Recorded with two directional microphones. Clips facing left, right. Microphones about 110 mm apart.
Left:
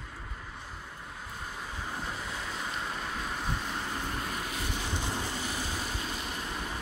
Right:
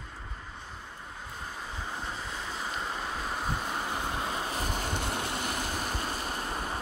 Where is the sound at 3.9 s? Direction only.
20° right (ahead or behind).